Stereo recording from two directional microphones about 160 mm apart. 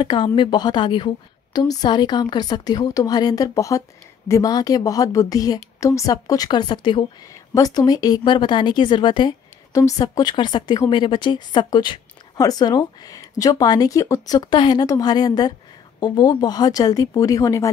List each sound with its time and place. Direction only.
0.0 s a woman's voice: 30° left (ahead or behind)